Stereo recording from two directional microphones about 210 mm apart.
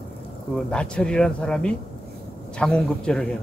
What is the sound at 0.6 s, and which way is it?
Speech, 5° left (ahead or behind).